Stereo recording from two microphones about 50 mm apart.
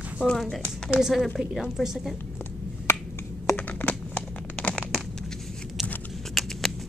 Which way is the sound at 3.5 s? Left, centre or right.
Left.